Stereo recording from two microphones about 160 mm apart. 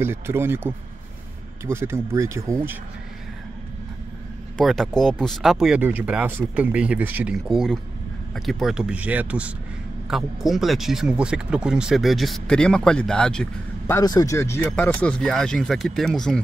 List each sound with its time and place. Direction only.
0.0 s speech: 15° right (ahead or behind)
4.6 s speech: centre (ahead or behind)
5.8 s speech: 10° right (ahead or behind); by 13.9 s 5° left (ahead or behind)
13.9 s speech: 20° left (ahead or behind); by 16.3 s 5° left (ahead or behind)